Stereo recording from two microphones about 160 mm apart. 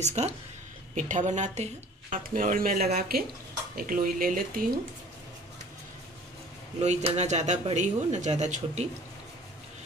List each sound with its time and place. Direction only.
0.0 s speech: 45° right (ahead or behind); by 4.6 s 60° right (ahead or behind)
6.8 s speech: 40° right (ahead or behind)